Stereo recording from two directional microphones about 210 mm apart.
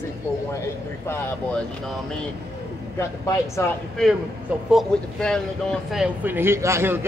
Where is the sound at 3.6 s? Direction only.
Centre (ahead or behind).